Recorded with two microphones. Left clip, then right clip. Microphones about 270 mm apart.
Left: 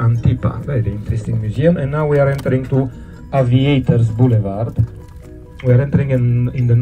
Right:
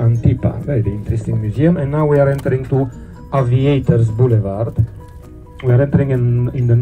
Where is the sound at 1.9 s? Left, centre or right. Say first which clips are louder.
Right 1 dB; centre.